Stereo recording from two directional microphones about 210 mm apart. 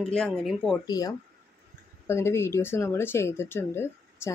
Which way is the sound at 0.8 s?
15° left (ahead or behind).